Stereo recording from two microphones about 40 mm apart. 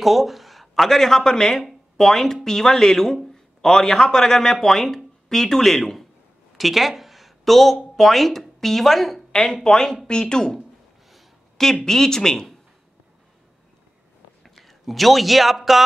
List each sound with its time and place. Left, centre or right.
0.0 s a man's voice: centre
6.5 s a woman's voice: centre
14.4 s a man's voice: centre